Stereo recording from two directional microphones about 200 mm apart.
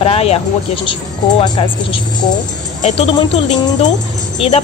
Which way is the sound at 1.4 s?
25° left (ahead or behind).